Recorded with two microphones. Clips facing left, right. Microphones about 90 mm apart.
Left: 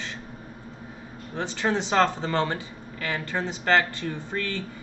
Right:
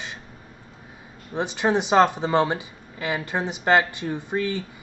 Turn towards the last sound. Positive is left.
turn(degrees=-15)  # may be behind; listen again after turning